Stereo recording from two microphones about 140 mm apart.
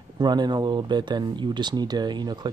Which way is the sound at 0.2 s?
30° right (ahead or behind).